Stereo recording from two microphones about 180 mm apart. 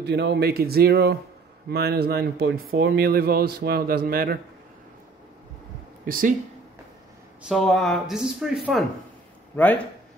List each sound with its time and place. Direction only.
0.0 s a man's voice: 70° right (ahead or behind)
6.0 s speech: 50° right (ahead or behind)
7.4 s a man's voice: centre (ahead or behind)